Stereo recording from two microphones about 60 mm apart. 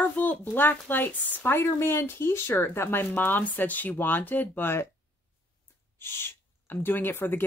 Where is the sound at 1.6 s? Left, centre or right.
Left.